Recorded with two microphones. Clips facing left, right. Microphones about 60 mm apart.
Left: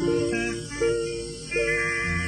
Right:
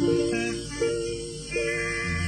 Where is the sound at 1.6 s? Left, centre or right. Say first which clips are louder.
Left 4 dB; left.